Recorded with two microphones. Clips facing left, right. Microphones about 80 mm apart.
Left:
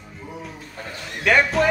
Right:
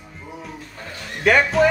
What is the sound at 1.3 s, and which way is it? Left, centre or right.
Speech, centre.